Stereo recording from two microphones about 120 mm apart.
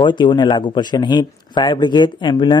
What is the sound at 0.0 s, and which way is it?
Speech, 40° left (ahead or behind).